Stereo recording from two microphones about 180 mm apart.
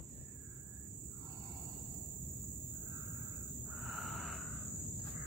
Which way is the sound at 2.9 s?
20° right (ahead or behind).